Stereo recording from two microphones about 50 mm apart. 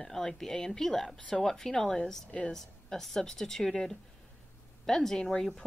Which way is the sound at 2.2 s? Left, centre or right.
Left.